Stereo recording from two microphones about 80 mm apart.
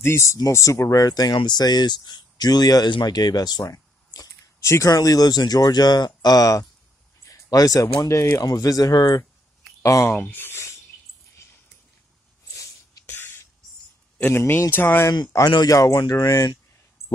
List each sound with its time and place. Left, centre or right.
0.0 s speech: left
1.3 s speech: left
2.9 s a sound: left
4.6 s speech: left
4.9 s speech: left
7.2 s a sound: left
8.0 s speech: left
8.4 s speech: left
9.8 s speech: left
10.2 s speech: left
13.0 s a sound: left
14.2 s a man's voice: left
15.3 s speech: left